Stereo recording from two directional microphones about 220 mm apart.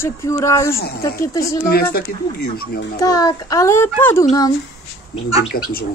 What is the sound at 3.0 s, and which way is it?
Speech, 15° left (ahead or behind).